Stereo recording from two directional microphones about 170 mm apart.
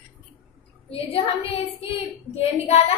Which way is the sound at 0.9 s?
35° left (ahead or behind).